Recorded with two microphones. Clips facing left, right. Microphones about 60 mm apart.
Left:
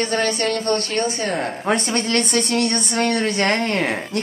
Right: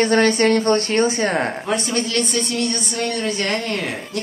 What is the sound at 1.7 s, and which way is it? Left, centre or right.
A woman's voice, left.